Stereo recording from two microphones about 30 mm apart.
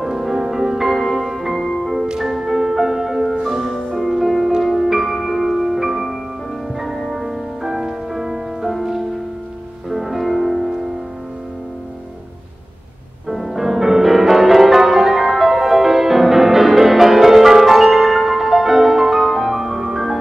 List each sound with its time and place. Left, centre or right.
0.0 s music: centre
1.6 s music: centre
2.1 s music: centre
3.7 s music: centre
7.2 s music: centre
9.8 s music: centre
13.3 s music: centre